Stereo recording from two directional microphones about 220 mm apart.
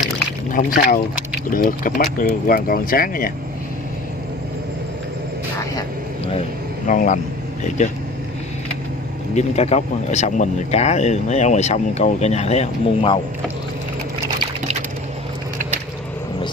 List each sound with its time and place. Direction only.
0.5 s speech: 40° left (ahead or behind)
6.9 s speech: 35° left (ahead or behind)
9.3 s speech: 30° left (ahead or behind)